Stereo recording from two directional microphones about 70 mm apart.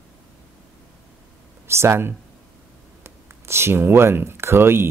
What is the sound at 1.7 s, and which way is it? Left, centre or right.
Speech, right.